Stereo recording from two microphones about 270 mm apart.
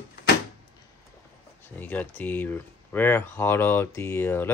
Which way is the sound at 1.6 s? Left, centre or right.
Centre.